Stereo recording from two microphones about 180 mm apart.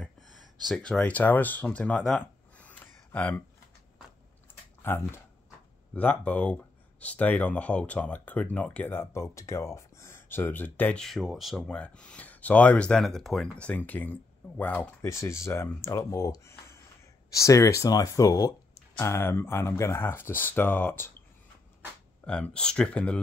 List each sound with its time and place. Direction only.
0.0 s a sound: centre (ahead or behind)
0.7 s speech: 5° left (ahead or behind)
4.8 s speech: 15° left (ahead or behind)
22.2 s speech: 5° left (ahead or behind)